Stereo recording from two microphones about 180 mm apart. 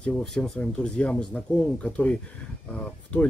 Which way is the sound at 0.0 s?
5° left (ahead or behind).